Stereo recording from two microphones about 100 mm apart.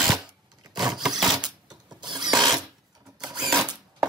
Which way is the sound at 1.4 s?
45° right (ahead or behind).